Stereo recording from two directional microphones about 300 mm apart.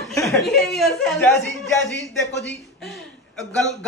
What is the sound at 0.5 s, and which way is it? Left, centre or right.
Speech, centre.